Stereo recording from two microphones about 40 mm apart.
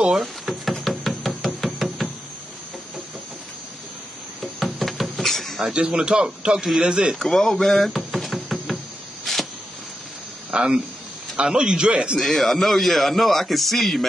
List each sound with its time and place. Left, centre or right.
0.1 s knock: centre
4.4 s a sound: centre
5.7 s speech: right
7.2 s music: centre
9.2 s a sound: centre
10.5 s speech: right
12.2 s speech: centre